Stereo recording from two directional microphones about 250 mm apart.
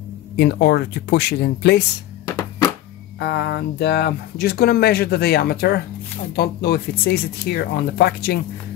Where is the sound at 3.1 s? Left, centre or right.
Left.